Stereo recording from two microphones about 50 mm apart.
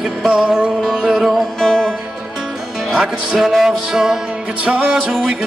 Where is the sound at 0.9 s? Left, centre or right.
Centre.